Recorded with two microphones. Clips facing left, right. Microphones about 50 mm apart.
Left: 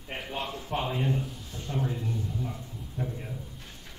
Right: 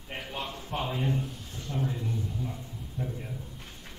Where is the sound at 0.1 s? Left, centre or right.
Centre.